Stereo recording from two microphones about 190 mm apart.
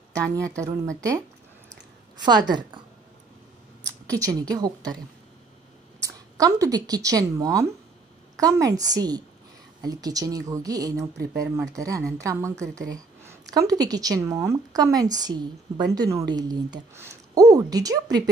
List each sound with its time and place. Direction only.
0.1 s speech: 15° right (ahead or behind)
2.2 s speech: 20° right (ahead or behind)
4.1 s speech: 20° right (ahead or behind)
6.0 s speech: 15° right (ahead or behind)